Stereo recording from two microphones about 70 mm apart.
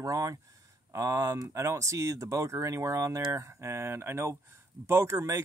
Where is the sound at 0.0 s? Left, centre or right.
Right.